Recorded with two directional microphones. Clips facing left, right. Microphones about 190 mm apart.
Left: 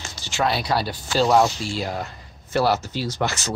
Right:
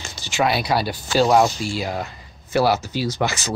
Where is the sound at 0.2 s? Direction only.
15° right (ahead or behind).